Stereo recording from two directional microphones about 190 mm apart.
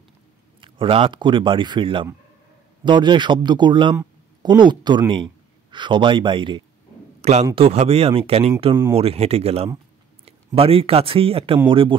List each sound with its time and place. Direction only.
0.6 s a man's voice: 25° right (ahead or behind)
7.2 s a sound: 35° right (ahead or behind)
7.5 s speech: 30° right (ahead or behind)